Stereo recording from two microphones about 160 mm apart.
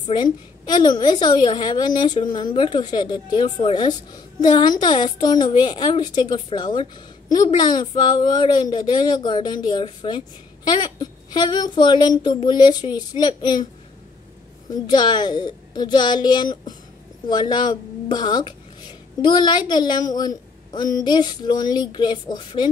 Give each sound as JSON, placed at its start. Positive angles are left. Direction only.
{"t": 0.0, "sound": "a woman's voice", "side_deg": 25}
{"t": 14.7, "sound": "a woman's voice", "side_deg": 25}